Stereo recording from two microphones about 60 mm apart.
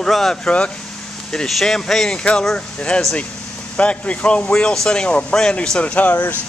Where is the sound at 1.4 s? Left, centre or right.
Centre.